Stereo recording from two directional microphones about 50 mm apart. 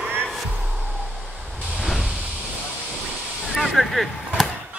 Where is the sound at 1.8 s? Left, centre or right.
Centre.